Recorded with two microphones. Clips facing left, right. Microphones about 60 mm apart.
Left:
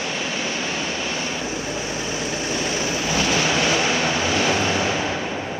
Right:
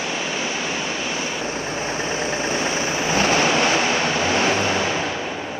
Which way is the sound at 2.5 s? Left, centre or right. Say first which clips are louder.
Right 2 dB; right.